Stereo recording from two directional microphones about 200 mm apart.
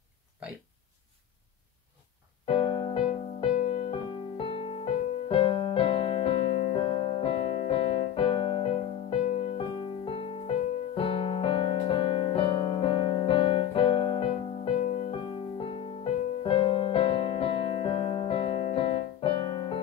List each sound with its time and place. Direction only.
2.4 s music: 25° left (ahead or behind)